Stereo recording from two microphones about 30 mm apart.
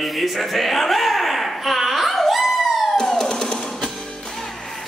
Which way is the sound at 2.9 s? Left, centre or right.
Centre.